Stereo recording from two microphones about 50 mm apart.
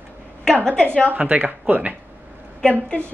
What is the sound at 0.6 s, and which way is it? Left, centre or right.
Speech, centre.